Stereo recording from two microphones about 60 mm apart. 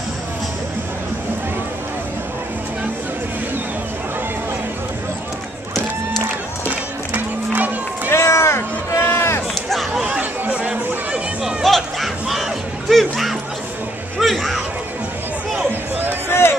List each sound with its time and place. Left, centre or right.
7.2 s run: right
8.1 s run: left
9.7 s chatter: centre
10.0 s chatter: right
11.4 s a sound: centre
16.3 s run: left